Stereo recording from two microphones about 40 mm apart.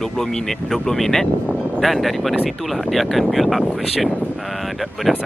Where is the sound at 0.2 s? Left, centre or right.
Centre.